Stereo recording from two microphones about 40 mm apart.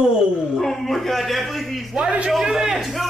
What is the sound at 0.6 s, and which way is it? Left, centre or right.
A man's voice, centre.